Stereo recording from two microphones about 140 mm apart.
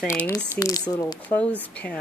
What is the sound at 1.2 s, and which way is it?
Speech, 10° left (ahead or behind).